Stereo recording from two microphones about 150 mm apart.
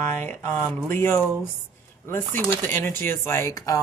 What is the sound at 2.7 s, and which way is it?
Speech, 15° left (ahead or behind).